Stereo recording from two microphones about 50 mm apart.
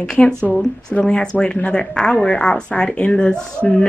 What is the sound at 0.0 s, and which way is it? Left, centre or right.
Speech, centre.